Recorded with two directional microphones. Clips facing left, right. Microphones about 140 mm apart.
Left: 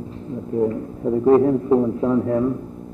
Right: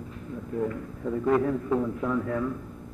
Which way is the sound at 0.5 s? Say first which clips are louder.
Left 9 dB; 30° left (ahead or behind).